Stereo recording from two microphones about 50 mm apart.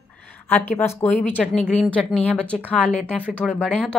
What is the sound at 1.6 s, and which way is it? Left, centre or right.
Speech, left.